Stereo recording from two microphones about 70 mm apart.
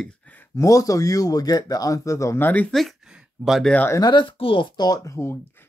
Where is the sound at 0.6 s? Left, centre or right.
Left.